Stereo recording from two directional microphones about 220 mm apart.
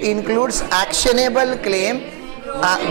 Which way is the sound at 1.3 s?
20° right (ahead or behind).